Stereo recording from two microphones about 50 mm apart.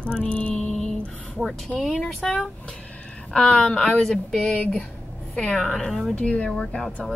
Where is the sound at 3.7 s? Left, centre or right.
Centre.